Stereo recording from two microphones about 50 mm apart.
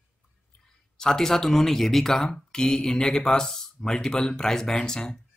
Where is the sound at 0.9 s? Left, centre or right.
Centre.